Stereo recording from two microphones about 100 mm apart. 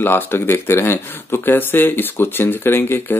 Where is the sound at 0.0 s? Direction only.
20° left (ahead or behind).